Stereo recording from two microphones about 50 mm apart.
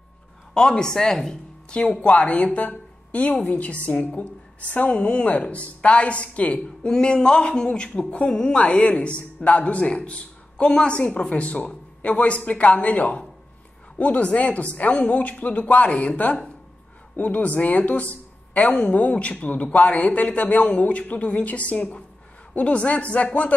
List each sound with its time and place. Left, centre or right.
0.6 s speech: centre
6.9 s speech: centre